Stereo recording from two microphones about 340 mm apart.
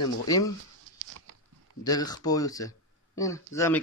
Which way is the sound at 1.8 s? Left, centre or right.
Centre.